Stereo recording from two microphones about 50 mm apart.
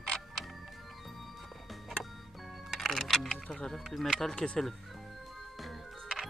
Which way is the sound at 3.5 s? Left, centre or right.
Centre.